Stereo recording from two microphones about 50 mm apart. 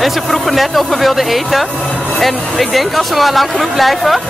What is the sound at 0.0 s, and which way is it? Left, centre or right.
Speech, centre.